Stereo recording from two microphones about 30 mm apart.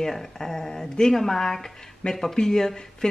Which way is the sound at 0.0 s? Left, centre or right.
Centre.